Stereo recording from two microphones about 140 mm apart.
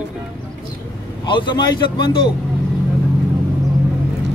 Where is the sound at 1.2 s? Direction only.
35° left (ahead or behind).